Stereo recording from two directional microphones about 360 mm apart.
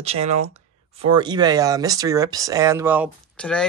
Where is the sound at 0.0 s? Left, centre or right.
Centre.